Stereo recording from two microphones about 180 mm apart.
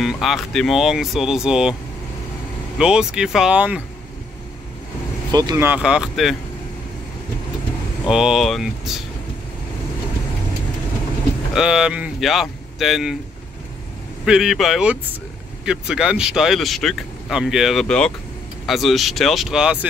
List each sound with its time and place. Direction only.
0.0 s speech: centre (ahead or behind)
2.8 s speech: 5° right (ahead or behind)
5.3 s speech: 25° right (ahead or behind)
5.7 s speech: 5° right (ahead or behind)
8.1 s speech: centre (ahead or behind)
11.5 s speech: 5° right (ahead or behind)
14.2 s speech: centre (ahead or behind)